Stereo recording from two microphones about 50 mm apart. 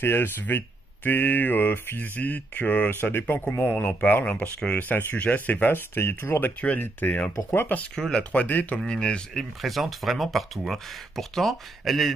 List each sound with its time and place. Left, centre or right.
0.0 s speech: left
4.2 s speech: left
4.7 s speech: left
6.8 s speech: left
7.9 s speech: centre
8.5 s speech: left
8.7 s speech: centre
9.3 s speech: centre